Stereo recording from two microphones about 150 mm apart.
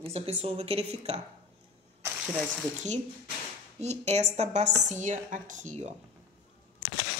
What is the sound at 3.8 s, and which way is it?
A woman's voice, 45° right (ahead or behind).